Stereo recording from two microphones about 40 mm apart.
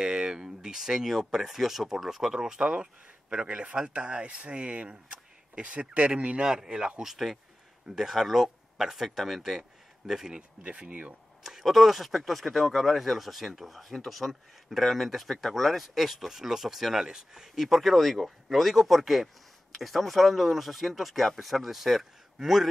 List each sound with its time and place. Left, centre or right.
0.0 s speech: centre
6.4 s speech: centre
10.3 s speech: right
11.4 s speech: centre
17.6 s speech: centre